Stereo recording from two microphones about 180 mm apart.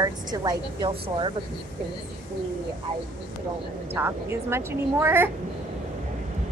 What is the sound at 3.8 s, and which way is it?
Speech, 10° right (ahead or behind).